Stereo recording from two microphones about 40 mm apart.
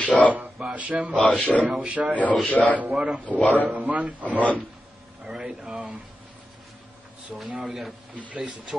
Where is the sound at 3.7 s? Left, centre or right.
Right.